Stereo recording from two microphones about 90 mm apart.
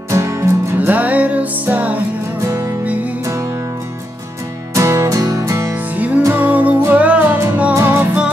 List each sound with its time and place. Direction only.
0.1 s music: 35° right (ahead or behind)
0.7 s music: 15° right (ahead or behind)
2.4 s music: 40° right (ahead or behind)
4.7 s music: 35° right (ahead or behind)
6.3 s music: 20° right (ahead or behind)